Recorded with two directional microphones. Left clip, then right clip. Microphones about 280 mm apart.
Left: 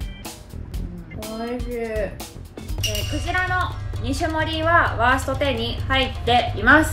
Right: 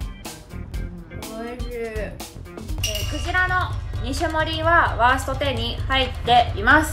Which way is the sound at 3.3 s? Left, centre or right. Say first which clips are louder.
Right 2 dB; centre.